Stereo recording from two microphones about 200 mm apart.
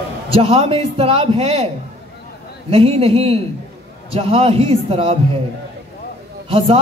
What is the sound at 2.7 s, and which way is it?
A man's voice, 30° right (ahead or behind).